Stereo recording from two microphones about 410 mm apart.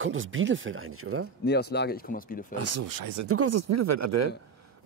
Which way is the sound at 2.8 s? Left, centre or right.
Right.